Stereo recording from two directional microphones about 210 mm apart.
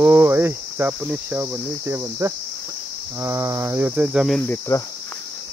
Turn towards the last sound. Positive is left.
turn(degrees=10)  # may be behind; listen again after turning